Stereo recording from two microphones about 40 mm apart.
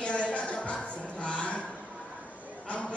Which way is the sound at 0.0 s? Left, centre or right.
Left.